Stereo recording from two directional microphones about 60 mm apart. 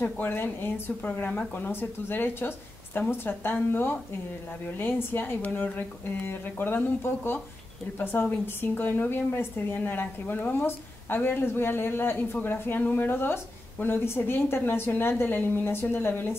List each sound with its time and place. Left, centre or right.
0.0 s a woman's voice: left